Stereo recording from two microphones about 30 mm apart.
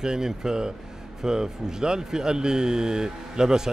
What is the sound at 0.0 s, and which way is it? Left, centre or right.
Speech, right.